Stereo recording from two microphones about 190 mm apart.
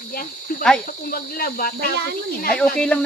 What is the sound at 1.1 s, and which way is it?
Speech, 50° left (ahead or behind).